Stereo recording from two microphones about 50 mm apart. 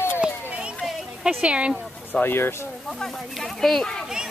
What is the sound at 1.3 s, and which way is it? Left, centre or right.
Speech, right.